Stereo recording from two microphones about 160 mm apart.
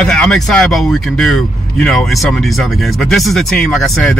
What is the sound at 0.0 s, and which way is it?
A man's voice, 5° left (ahead or behind).